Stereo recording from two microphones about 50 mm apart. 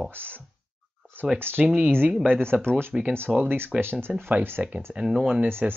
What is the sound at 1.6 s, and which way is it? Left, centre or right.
Speech, right.